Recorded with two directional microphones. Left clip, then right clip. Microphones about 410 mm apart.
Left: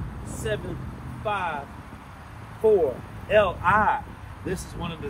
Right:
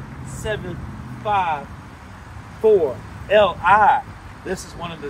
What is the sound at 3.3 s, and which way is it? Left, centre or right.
Speech, centre.